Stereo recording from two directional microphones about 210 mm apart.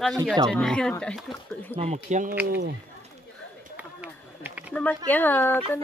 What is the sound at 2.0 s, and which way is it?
Speech, 35° right (ahead or behind).